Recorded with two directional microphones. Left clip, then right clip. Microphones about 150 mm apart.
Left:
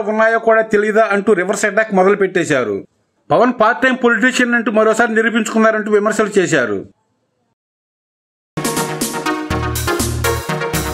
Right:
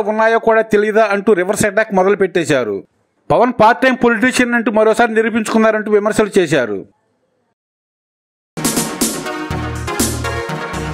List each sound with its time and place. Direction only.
0.0 s a man's voice: 35° right (ahead or behind)
8.6 s music: centre (ahead or behind)